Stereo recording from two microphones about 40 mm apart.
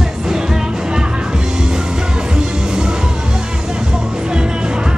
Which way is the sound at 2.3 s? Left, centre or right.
Centre.